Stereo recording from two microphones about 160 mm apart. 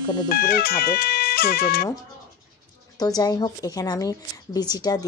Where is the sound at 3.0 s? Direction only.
25° left (ahead or behind).